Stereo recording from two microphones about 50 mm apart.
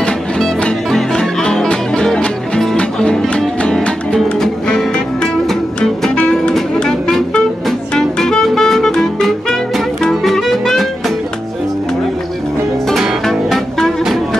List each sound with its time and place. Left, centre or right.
0.8 s music: centre
6.8 s music: centre
13.2 s music: centre